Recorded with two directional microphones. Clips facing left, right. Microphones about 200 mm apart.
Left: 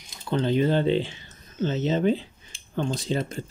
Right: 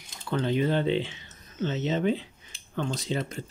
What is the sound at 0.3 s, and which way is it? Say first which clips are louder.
Speech: left 3 dB; 30° left (ahead or behind).